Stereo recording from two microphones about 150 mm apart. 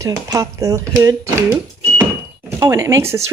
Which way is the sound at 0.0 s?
20° right (ahead or behind).